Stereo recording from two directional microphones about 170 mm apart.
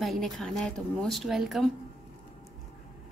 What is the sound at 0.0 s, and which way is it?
A woman's voice, centre (ahead or behind).